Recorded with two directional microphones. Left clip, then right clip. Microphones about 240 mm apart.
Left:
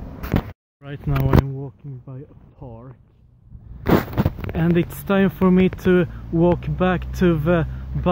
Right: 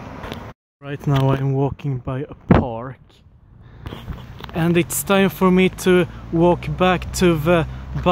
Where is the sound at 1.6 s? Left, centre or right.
Right.